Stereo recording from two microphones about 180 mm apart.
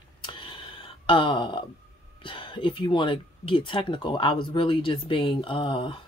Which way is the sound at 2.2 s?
25° left (ahead or behind).